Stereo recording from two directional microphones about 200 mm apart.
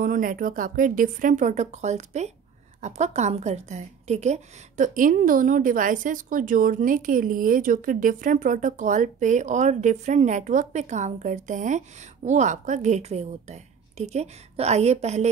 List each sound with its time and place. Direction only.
0.0 s a woman's voice: 45° right (ahead or behind)